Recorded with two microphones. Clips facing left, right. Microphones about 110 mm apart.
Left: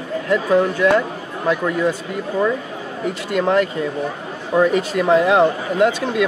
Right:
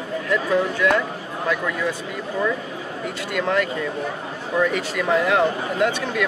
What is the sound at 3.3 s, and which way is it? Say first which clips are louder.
Speech: left 5 dB; 30° left (ahead or behind).